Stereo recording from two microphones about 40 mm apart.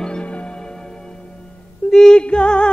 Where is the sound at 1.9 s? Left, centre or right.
Centre.